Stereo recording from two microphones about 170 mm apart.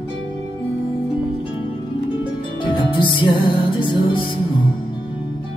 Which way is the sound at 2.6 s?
30° left (ahead or behind).